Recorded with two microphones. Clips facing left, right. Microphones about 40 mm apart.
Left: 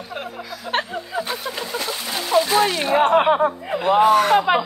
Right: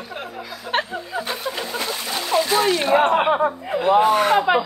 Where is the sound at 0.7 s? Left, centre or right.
Centre.